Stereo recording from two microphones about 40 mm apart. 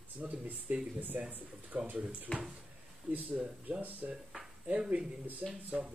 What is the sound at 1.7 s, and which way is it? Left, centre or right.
Speech, right.